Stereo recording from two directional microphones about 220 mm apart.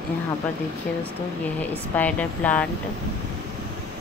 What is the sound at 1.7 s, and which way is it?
Speech, 5° left (ahead or behind).